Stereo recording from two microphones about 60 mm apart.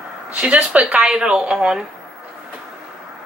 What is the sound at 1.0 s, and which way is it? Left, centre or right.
Speech, centre.